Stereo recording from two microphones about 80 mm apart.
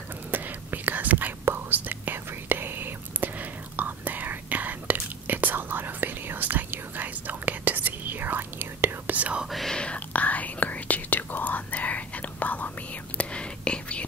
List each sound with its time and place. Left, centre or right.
0.3 s whispering: right
9.5 s whispering: centre